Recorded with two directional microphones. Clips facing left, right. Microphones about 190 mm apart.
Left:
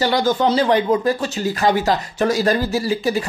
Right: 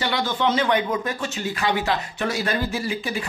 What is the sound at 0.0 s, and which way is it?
Speech, 40° left (ahead or behind).